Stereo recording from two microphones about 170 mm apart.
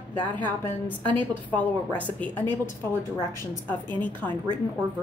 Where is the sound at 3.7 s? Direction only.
10° left (ahead or behind).